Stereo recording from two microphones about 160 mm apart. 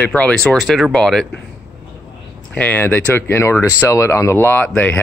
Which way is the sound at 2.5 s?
10° left (ahead or behind).